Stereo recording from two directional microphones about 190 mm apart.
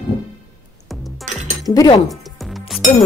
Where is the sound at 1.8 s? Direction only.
20° left (ahead or behind).